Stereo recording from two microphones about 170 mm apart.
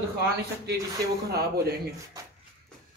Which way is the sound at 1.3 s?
65° right (ahead or behind).